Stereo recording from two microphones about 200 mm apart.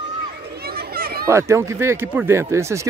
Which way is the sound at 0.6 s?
50° right (ahead or behind).